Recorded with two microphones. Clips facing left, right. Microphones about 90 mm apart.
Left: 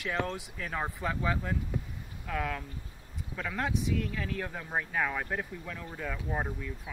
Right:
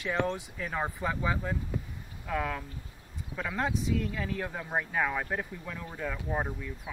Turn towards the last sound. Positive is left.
turn(degrees=-5)  # may be behind; listen again after turning